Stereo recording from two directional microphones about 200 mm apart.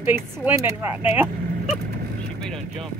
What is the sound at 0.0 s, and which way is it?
Speech, 10° right (ahead or behind).